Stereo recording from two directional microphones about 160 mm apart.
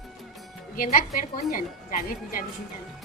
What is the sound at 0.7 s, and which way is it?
Speech, 60° left (ahead or behind).